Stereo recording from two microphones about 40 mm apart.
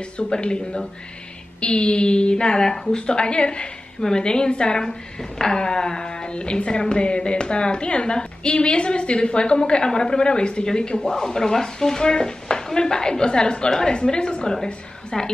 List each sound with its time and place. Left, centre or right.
0.2 s a woman's voice: left